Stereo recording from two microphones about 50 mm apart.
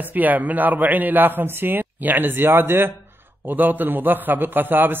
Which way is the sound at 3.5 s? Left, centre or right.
Right.